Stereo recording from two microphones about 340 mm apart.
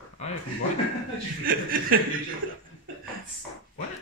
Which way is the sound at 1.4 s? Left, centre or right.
Right.